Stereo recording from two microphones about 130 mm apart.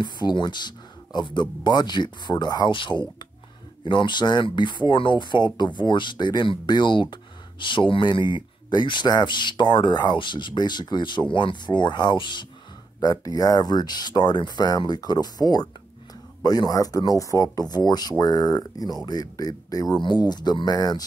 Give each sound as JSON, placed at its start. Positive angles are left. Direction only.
{"t": 0.0, "sound": "speech", "side_deg": 35}